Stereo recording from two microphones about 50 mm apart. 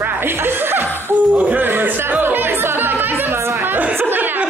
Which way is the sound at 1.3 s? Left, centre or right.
Right.